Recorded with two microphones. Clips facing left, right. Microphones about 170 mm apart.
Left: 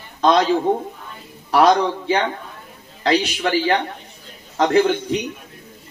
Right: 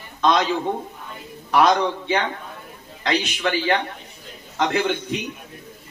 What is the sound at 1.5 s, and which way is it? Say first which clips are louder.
Speech: left 3 dB; 35° left (ahead or behind).